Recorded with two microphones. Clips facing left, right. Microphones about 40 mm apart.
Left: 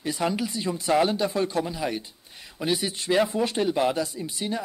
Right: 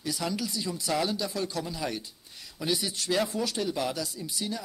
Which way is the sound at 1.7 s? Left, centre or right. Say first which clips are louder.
Left 4 dB; left.